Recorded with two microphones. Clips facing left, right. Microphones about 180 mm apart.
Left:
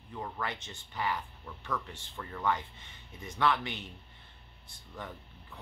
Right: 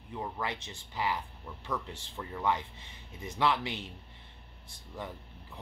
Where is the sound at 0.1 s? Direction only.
15° right (ahead or behind).